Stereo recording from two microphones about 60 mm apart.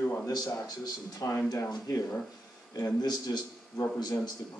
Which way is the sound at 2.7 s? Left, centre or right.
Left.